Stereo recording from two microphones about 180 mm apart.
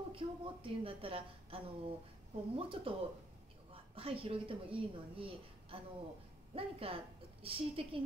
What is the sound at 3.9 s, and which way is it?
A woman's voice, 30° right (ahead or behind).